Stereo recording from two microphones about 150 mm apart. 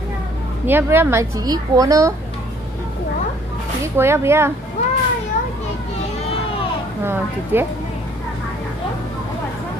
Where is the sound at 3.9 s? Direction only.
15° right (ahead or behind).